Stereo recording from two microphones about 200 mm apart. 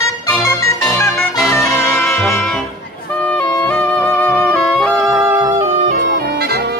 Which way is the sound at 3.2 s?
5° left (ahead or behind).